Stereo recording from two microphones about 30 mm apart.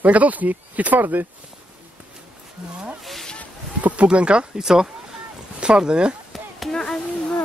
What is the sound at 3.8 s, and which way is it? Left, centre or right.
Speech, right.